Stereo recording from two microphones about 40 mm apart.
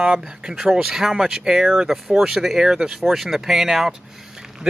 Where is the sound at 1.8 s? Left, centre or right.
Centre.